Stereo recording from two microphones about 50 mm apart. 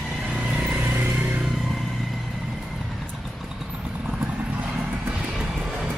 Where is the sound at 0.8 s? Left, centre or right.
Right.